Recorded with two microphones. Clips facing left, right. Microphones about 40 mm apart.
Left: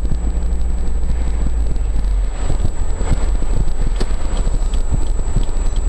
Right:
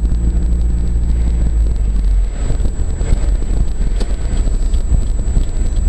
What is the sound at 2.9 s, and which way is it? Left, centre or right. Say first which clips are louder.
Vehicle: left 2 dB; left.